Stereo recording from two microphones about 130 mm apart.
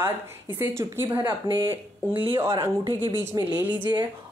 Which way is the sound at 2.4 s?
20° right (ahead or behind).